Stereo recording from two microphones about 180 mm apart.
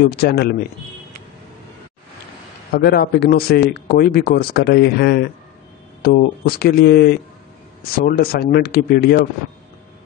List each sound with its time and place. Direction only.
0.1 s speech: 60° left (ahead or behind)
2.7 s speech: 60° left (ahead or behind)